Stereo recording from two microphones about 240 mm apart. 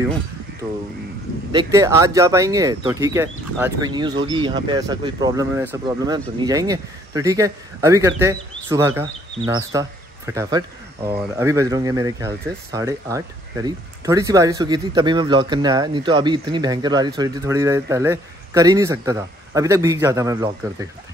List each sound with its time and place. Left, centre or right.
1.5 s speech: centre